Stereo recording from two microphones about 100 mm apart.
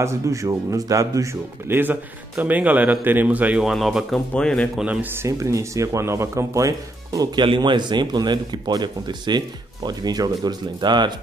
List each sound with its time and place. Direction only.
0.0 s speech: 30° right (ahead or behind); by 3.6 s 15° right (ahead or behind)
3.6 s a man's voice: centre (ahead or behind)
5.2 s speech: 30° right (ahead or behind)
7.4 s speech: 55° right (ahead or behind)